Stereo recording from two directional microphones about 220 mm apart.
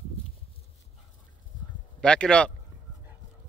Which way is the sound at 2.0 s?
5° left (ahead or behind).